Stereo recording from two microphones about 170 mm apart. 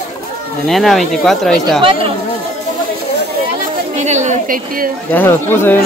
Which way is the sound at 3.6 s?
45° right (ahead or behind).